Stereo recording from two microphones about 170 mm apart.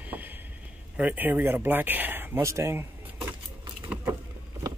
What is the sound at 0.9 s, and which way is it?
Speech, 10° right (ahead or behind).